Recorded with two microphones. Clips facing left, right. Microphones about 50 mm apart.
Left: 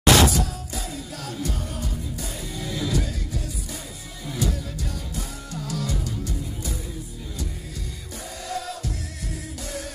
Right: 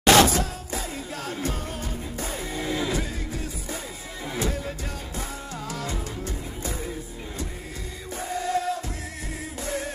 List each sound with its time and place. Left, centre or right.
0.0 s music: right
8.3 s music: right